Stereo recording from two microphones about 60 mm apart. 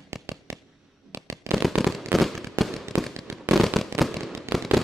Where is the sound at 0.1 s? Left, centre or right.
Right.